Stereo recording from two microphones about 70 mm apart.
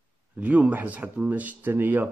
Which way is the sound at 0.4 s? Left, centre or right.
Right.